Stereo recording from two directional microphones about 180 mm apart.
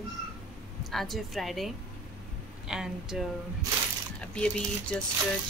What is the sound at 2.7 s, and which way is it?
Speech, centre (ahead or behind).